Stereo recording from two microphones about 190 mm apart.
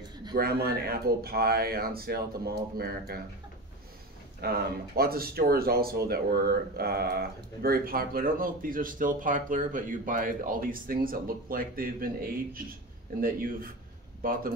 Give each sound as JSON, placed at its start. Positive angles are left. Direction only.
{"t": 0.4, "sound": "speech", "side_deg": -55}
{"t": 4.4, "sound": "speech", "side_deg": -55}